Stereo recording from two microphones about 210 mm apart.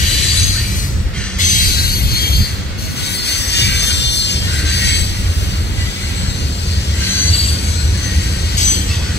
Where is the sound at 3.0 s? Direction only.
50° left (ahead or behind).